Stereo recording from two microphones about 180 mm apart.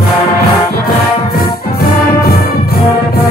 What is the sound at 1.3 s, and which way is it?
Music, 55° left (ahead or behind).